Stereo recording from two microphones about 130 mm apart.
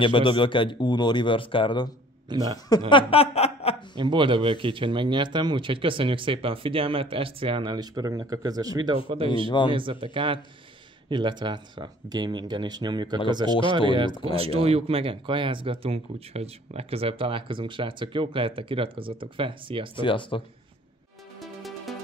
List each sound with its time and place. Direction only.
0.0 s speech: 40° left (ahead or behind)
2.2 s a man's voice: 30° right (ahead or behind)
2.9 s snicker: 40° left (ahead or behind)
3.9 s speech: 35° right (ahead or behind)
9.5 s speech: 40° left (ahead or behind)
9.8 s speech: 40° right (ahead or behind)
20.0 s speech: 40° left (ahead or behind)
21.4 s music: centre (ahead or behind)